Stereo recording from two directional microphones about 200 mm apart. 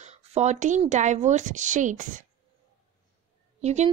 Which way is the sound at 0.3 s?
35° right (ahead or behind).